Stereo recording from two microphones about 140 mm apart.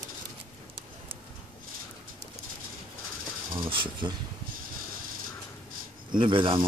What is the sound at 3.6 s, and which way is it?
Speech, 35° right (ahead or behind).